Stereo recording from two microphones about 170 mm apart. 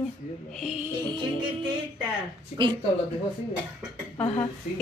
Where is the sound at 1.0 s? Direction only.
25° right (ahead or behind).